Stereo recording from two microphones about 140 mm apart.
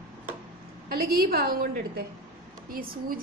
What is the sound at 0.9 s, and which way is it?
A woman's voice, 90° right.